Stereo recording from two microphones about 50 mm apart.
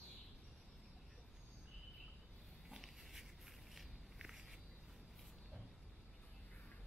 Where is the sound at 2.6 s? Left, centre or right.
Centre.